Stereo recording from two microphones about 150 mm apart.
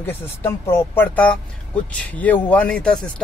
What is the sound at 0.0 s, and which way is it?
Speech, 15° left (ahead or behind).